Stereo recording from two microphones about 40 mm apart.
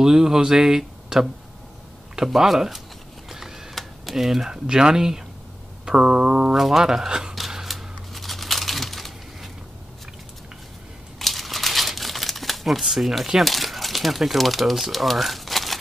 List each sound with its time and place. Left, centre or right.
0.0 s speech: centre
2.2 s speech: centre
3.3 s printer: centre
3.7 s typing: centre
4.2 s speech: centre
5.9 s a sound: right
6.5 s speech: centre
6.8 s speech: centre
7.6 s a sound: centre
11.1 s crumpling: centre
13.4 s speech: centre